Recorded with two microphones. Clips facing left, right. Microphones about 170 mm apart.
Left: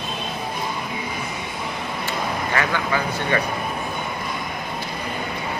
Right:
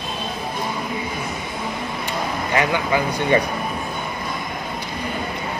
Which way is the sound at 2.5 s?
20° right (ahead or behind).